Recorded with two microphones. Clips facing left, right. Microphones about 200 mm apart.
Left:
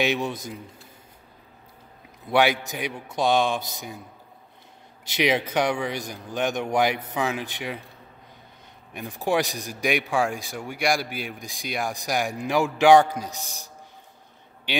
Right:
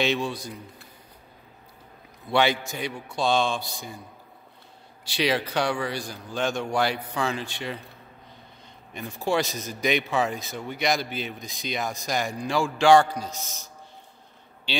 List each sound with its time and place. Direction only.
0.0 s a man's voice: 15° left (ahead or behind)
2.2 s a man's voice: 15° left (ahead or behind)
5.0 s a man's voice: 20° left (ahead or behind)
8.9 s a man's voice: 15° left (ahead or behind)